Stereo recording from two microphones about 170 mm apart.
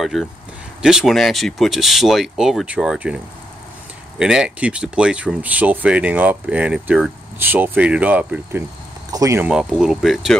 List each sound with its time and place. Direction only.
0.0 s speech: centre (ahead or behind)
4.2 s speech: 5° right (ahead or behind)
9.5 s speech: 5° right (ahead or behind)